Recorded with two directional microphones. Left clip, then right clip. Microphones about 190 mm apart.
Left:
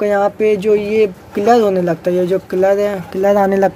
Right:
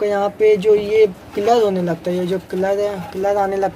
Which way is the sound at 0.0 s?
30° left (ahead or behind).